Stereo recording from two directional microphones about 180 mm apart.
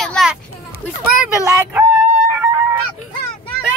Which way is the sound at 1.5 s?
15° right (ahead or behind).